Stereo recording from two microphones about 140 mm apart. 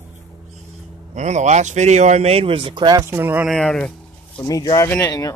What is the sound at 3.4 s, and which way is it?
Speech, 5° left (ahead or behind).